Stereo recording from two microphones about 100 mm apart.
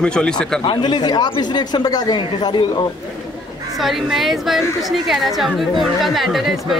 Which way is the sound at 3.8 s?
Centre (ahead or behind).